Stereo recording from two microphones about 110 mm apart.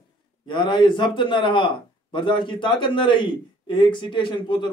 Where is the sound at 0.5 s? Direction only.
45° left (ahead or behind).